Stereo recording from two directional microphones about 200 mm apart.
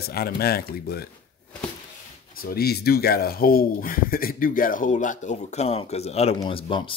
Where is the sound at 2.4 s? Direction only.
50° left (ahead or behind); by 6.9 s 25° left (ahead or behind).